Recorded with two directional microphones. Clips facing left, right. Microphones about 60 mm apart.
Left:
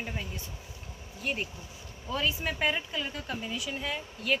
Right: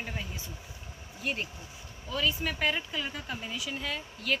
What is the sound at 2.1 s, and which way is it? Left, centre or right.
Speech, left.